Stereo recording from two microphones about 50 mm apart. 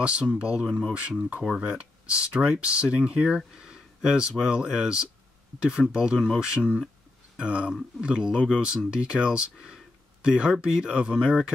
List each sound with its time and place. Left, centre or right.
0.0 s speech: right
3.3 s a sound: centre
4.3 s speech: centre
6.1 s speech: centre
6.4 s speech: centre